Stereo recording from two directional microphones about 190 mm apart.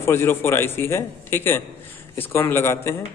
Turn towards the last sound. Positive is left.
turn(degrees=15)  # may be behind; listen again after turning